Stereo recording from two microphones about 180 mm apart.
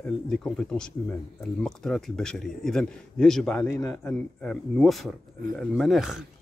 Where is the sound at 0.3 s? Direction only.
5° left (ahead or behind).